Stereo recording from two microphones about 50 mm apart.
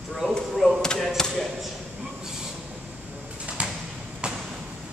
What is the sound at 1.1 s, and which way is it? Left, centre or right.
Speech, centre.